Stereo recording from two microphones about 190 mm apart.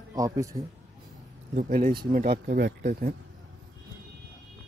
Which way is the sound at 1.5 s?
40° right (ahead or behind).